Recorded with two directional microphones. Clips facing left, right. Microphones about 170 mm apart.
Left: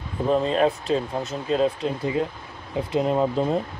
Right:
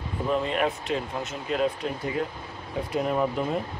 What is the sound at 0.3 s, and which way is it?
Speech, 30° left (ahead or behind).